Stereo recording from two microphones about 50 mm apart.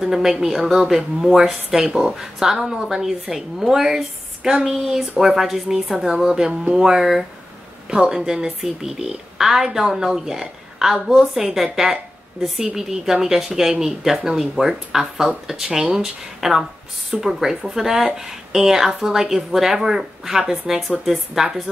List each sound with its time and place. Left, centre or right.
0.0 s a woman's voice: centre
7.9 s a woman's voice: centre